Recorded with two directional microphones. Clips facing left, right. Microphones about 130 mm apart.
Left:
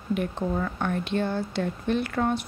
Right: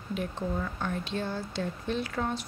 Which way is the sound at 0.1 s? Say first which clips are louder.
Left 5 dB; 60° left (ahead or behind).